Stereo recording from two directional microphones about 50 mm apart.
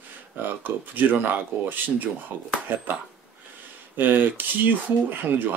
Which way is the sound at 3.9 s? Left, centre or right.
Right.